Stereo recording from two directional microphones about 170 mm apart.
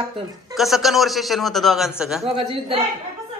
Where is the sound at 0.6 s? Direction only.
Centre (ahead or behind).